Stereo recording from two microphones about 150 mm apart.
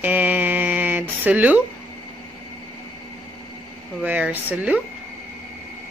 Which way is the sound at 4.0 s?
10° right (ahead or behind).